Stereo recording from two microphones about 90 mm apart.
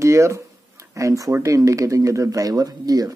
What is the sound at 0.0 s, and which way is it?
Speech, 35° right (ahead or behind).